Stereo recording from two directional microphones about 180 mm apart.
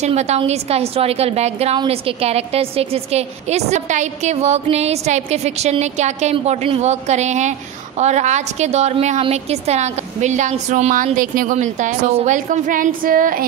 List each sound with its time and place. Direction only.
0.0 s a woman's voice: 40° right (ahead or behind)